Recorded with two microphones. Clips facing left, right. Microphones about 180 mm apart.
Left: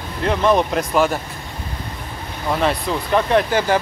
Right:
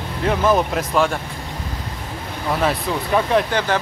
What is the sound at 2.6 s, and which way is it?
Speech, centre (ahead or behind).